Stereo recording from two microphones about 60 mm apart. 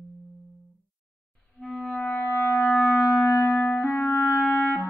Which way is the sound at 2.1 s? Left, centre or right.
Left.